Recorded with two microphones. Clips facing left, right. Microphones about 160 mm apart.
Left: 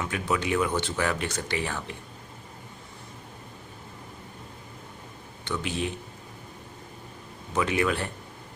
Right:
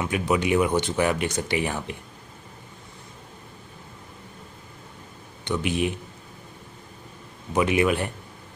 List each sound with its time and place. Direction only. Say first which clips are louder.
0.0 s speech: right 5 dB; 15° right (ahead or behind)
5.4 s speech: right 5 dB; 15° right (ahead or behind)
7.5 s speech: right 4 dB; 15° right (ahead or behind)